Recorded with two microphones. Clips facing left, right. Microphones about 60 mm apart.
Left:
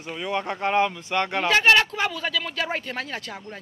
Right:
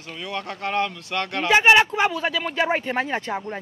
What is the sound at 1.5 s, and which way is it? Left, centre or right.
Speech, centre.